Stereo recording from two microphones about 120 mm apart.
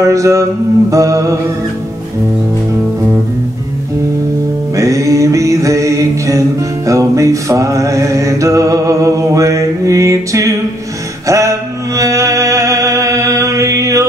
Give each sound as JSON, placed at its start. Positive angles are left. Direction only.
{"t": 0.0, "sound": "mantra", "side_deg": -25}
{"t": 4.7, "sound": "music", "side_deg": -25}
{"t": 11.2, "sound": "mantra", "side_deg": -25}